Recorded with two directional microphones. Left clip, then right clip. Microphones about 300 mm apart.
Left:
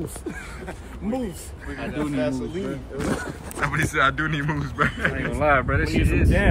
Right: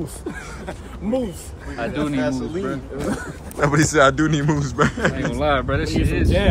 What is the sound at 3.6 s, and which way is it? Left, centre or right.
Speech, centre.